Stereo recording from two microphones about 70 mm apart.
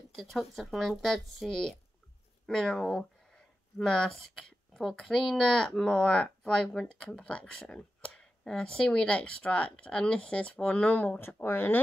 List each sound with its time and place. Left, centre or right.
0.1 s speech: centre; by 11.1 s left
11.1 s speech: left